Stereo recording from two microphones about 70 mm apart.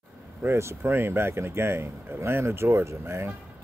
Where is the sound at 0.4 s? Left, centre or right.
Right.